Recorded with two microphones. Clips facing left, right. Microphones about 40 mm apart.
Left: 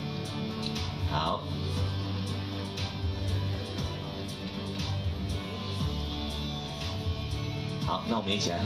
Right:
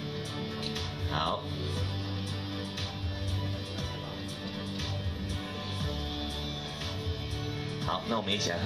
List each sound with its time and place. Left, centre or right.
7.8 s speech: right